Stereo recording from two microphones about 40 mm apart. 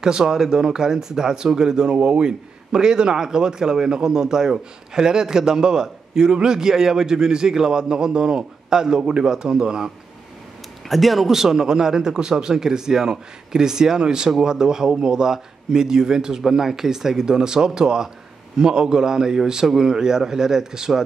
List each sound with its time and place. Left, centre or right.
0.0 s a man's voice: centre
10.9 s a man's voice: centre